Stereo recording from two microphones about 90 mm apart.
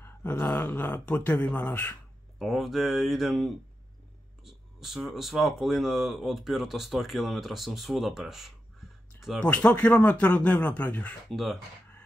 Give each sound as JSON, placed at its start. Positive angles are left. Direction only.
{"t": 0.0, "sound": "speech", "side_deg": 25}
{"t": 2.3, "sound": "speech", "side_deg": 0}
{"t": 9.4, "sound": "speech", "side_deg": 15}
{"t": 11.2, "sound": "speech", "side_deg": 0}